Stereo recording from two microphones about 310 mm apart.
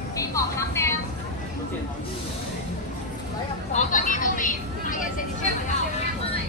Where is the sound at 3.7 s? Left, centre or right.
Left.